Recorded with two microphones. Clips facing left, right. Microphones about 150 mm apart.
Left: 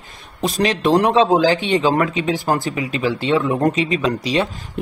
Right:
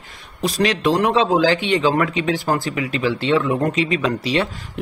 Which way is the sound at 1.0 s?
20° left (ahead or behind).